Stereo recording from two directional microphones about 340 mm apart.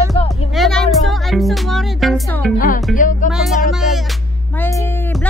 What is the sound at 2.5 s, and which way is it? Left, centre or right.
Music, left.